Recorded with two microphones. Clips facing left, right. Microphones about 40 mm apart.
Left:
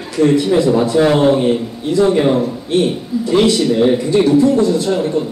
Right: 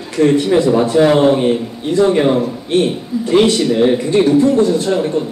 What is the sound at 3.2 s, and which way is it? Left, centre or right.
Speech, right.